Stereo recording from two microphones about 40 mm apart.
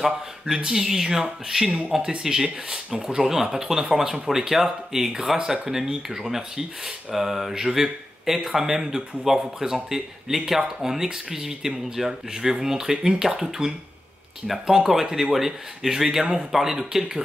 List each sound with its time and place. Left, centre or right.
0.7 s speech: centre